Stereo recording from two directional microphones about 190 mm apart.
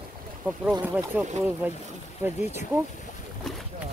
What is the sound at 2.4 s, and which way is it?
Speech, 35° left (ahead or behind).